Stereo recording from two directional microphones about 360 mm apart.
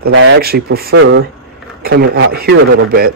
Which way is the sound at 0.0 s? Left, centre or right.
Right.